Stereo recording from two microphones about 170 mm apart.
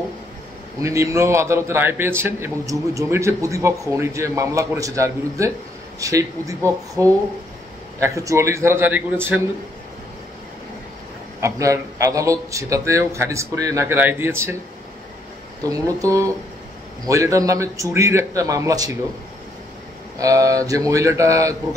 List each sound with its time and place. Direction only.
0.7 s a man's voice: 20° right (ahead or behind)
11.4 s speech: 20° right (ahead or behind)
15.6 s a man's voice: 20° right (ahead or behind)
20.2 s a man's voice: 20° right (ahead or behind)